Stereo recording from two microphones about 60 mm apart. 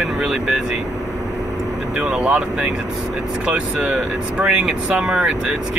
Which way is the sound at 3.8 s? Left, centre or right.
Centre.